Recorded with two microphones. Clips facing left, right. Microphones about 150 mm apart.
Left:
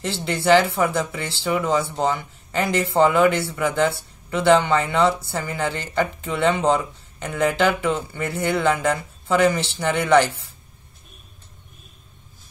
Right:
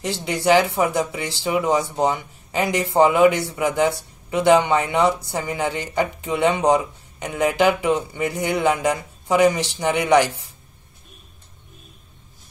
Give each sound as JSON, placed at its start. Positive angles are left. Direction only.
{"t": 0.0, "sound": "speech", "side_deg": -15}